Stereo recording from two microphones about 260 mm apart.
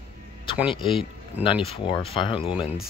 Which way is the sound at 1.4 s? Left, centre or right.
Left.